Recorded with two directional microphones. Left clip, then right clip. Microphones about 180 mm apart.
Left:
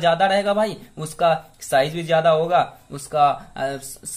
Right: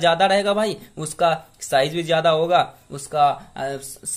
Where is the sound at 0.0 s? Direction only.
25° right (ahead or behind).